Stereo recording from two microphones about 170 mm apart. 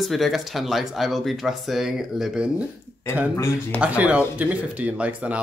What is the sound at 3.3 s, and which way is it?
Speech, 15° left (ahead or behind).